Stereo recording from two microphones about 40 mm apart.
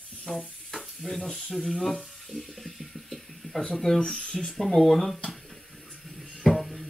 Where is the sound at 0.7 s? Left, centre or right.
Centre.